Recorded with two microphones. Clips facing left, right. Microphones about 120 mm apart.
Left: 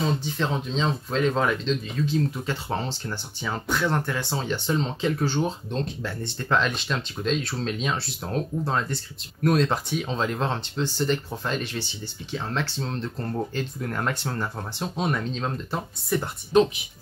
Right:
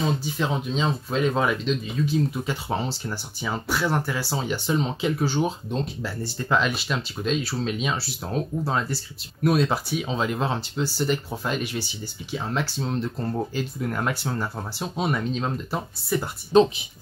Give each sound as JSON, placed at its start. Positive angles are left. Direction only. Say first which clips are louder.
{"t": 0.2, "sound": "speech", "louder": "right 1 dB", "side_deg": -10}
{"t": 16.5, "sound": "speech", "louder": "right 2 dB", "side_deg": -30}